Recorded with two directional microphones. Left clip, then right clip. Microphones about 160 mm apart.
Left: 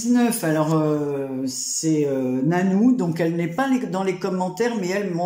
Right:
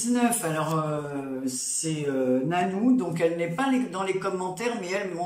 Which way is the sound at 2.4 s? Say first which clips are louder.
Left 4 dB; 35° left (ahead or behind).